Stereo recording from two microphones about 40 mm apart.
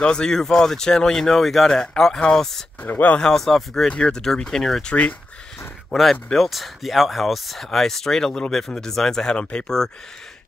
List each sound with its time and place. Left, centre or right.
0.0 s speech: centre
2.8 s speech: left
3.3 s speech: centre
5.9 s speech: centre
9.4 s speech: left